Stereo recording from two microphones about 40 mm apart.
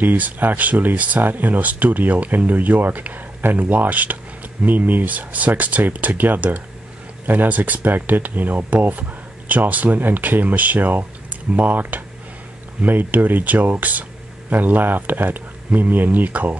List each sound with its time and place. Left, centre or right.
0.0 s speech: right